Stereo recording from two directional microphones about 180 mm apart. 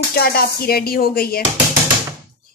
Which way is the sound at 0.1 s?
60° left (ahead or behind).